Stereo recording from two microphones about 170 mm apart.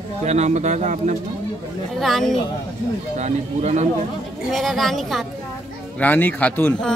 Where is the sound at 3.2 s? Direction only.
40° right (ahead or behind).